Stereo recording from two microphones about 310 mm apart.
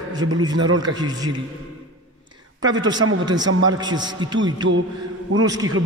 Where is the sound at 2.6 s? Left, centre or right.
Centre.